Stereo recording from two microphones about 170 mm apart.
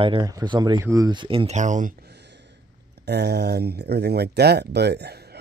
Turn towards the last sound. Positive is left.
turn(degrees=-75)  # may be behind; listen again after turning